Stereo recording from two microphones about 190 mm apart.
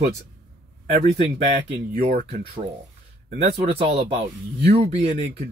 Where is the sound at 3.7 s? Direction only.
30° right (ahead or behind).